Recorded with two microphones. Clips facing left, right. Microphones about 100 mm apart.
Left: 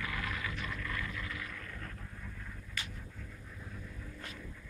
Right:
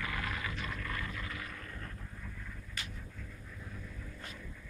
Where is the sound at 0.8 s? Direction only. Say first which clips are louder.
Even; 35° right (ahead or behind).